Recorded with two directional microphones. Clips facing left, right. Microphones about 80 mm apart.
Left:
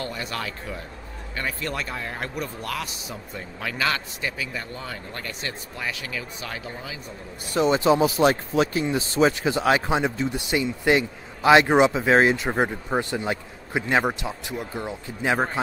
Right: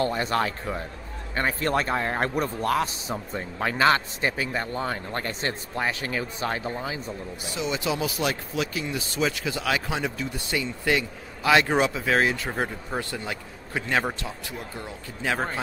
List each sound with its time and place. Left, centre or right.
0.0 s a man's voice: right
7.4 s speech: left